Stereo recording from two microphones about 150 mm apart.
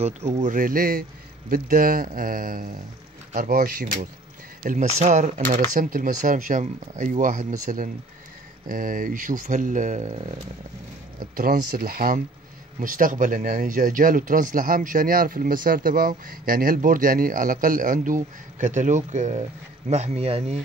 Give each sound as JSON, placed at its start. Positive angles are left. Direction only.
{"t": 0.0, "sound": "speech", "side_deg": -45}
{"t": 3.3, "sound": "speech", "side_deg": -85}
{"t": 4.6, "sound": "speech", "side_deg": -55}
{"t": 11.3, "sound": "speech", "side_deg": -80}